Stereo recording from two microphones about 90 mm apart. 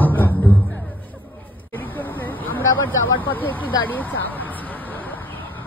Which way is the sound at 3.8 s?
20° left (ahead or behind).